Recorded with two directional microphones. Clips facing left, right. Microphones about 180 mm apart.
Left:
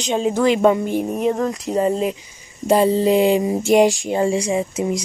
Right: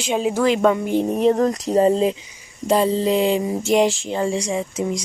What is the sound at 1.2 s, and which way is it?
Speech, 35° right (ahead or behind).